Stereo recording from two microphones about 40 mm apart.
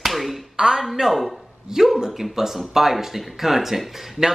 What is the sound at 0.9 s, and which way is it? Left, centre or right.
Speech, centre.